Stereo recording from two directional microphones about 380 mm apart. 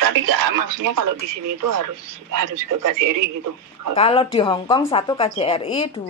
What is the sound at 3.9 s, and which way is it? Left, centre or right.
Speech, centre.